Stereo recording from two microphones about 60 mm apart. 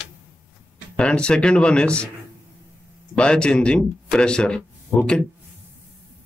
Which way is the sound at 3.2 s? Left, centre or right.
Centre.